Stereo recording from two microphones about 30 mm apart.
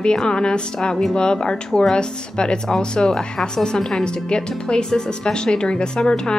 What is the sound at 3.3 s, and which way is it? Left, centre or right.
A woman's voice, centre.